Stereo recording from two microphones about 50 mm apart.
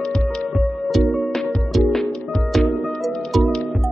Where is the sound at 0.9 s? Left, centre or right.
Centre.